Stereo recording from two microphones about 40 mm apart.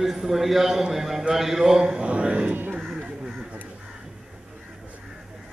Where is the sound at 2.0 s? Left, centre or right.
Right.